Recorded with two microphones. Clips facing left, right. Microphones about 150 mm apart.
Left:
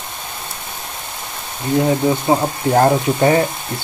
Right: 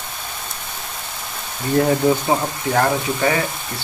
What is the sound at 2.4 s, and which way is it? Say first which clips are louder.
Speech: left 5 dB; 30° left (ahead or behind).